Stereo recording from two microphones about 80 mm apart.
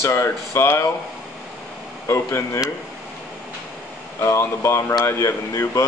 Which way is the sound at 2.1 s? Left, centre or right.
Left.